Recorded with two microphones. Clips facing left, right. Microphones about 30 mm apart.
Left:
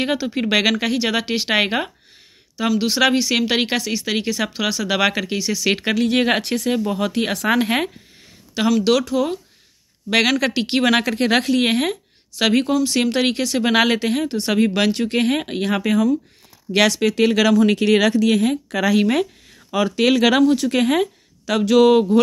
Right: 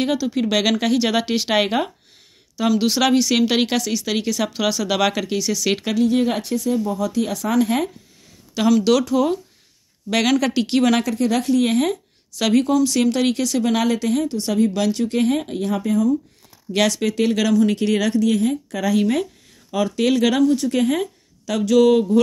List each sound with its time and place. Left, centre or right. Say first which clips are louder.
0.0 s speech: right 1 dB; left
5.9 s speech: right 2 dB; left
6.8 s speech: left 1 dB; left
7.5 s speech: right 3 dB; left
8.5 s speech: right 1 dB; centre
10.0 s speech: left 1 dB; left
11.1 s speech: left 1 dB; left
11.9 s a woman's voice: right 2 dB; left
13.7 s speech: left 3 dB; left
14.3 s speech: left 1 dB; left
16.7 s speech: left 2 dB; left
17.6 s speech: left 3 dB; left
18.9 s speech: left 2 dB; left
21.0 s a woman's voice: left 4 dB; left